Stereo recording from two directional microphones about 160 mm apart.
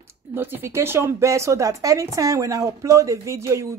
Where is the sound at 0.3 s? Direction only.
15° right (ahead or behind).